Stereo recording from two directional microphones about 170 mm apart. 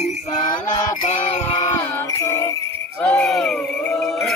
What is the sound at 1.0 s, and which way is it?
Music, 40° left (ahead or behind).